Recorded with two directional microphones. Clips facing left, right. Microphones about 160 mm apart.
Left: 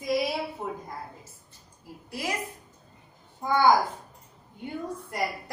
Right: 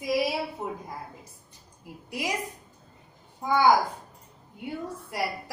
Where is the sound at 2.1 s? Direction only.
15° right (ahead or behind).